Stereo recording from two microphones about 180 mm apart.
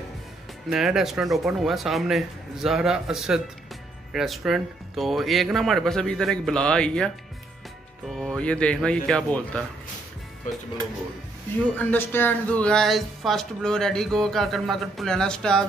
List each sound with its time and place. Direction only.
0.7 s speech: centre (ahead or behind)
8.1 s speech: centre (ahead or behind)
11.7 s speech: 10° left (ahead or behind)